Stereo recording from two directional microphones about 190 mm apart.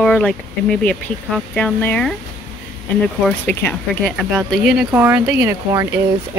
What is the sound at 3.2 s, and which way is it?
Speech, 5° left (ahead or behind).